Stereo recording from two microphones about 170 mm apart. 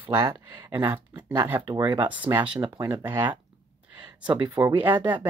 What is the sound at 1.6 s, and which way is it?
Speech, 25° right (ahead or behind).